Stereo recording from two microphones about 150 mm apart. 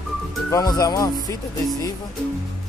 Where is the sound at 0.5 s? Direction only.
25° left (ahead or behind).